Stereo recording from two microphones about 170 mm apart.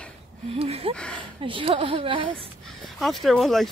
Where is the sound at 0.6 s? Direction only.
35° right (ahead or behind).